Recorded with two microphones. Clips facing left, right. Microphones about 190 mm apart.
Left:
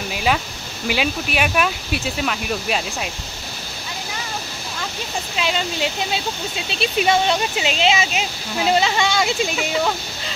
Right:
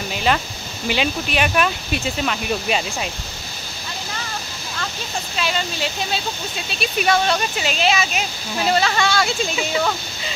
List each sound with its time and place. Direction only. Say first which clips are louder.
0.1 s a sound: even; 5° left (ahead or behind)
0.8 s speech: even; 5° left (ahead or behind)
5.4 s speech: left 2 dB; 20° left (ahead or behind)